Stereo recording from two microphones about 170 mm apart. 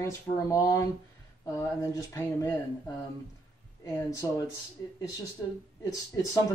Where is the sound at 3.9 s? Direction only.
20° left (ahead or behind).